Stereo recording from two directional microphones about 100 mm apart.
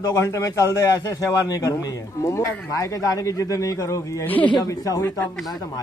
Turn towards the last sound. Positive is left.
turn(degrees=40)  # may be behind; listen again after turning